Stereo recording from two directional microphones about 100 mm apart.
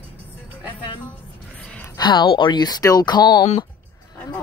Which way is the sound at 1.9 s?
45° left (ahead or behind).